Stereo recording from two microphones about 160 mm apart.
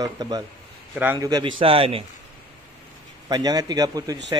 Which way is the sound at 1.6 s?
35° right (ahead or behind).